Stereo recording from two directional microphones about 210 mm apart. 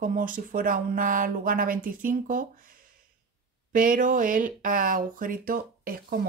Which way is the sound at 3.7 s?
40° right (ahead or behind).